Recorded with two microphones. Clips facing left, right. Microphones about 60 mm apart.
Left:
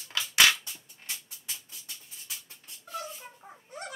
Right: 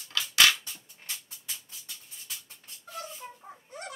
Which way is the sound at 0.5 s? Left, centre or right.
Centre.